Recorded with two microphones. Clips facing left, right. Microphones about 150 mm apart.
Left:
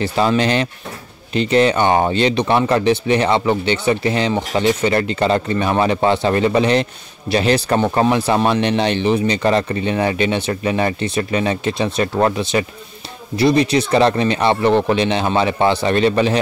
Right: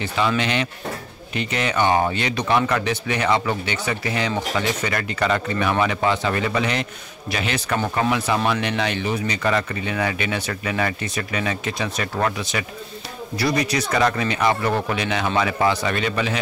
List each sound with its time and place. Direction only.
0.0 s speech: 35° left (ahead or behind)